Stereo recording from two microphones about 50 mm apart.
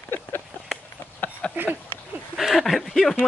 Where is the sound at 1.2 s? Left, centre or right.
Left.